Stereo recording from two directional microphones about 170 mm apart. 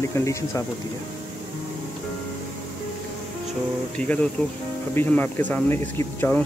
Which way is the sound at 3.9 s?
5° left (ahead or behind).